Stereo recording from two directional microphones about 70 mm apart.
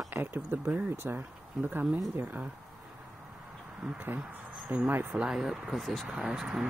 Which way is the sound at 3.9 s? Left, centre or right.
Right.